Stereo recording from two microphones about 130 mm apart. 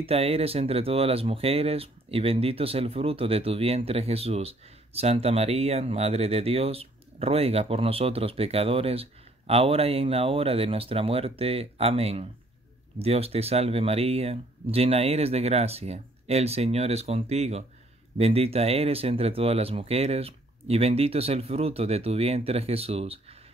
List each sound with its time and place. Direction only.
0.0 s speech: 50° right (ahead or behind)